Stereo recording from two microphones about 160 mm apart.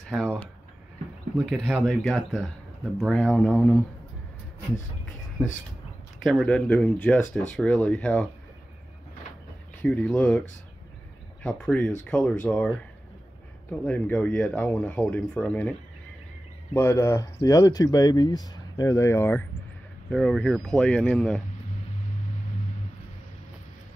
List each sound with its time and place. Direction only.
0.1 s speech: centre (ahead or behind)
6.2 s speech: centre (ahead or behind)
9.8 s speech: 10° left (ahead or behind)
11.4 s speech: 5° left (ahead or behind)
16.7 s speech: 15° left (ahead or behind)
20.1 s speech: 5° left (ahead or behind)